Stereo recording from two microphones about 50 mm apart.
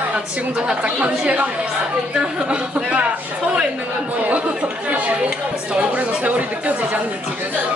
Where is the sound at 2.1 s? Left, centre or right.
Right.